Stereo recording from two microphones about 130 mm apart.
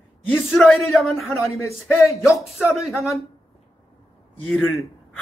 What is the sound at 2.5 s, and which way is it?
Speech, centre (ahead or behind).